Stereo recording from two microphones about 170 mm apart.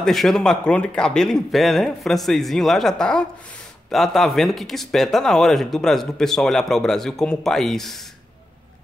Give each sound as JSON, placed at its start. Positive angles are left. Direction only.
{"t": 0.0, "sound": "speech", "side_deg": 0}